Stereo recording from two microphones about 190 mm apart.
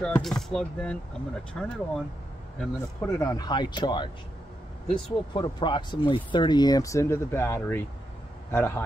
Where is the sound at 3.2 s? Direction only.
20° left (ahead or behind).